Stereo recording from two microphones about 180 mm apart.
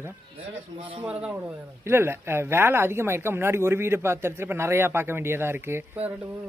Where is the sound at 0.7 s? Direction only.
30° right (ahead or behind).